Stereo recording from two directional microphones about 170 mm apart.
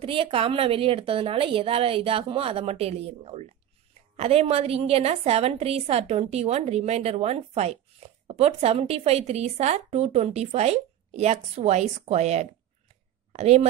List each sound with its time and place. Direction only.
0.0 s a woman's voice: 35° right (ahead or behind)